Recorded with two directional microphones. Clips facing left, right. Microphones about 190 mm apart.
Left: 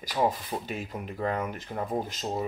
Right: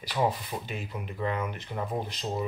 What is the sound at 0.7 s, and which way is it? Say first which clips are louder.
Speech: left 2 dB; 45° left (ahead or behind).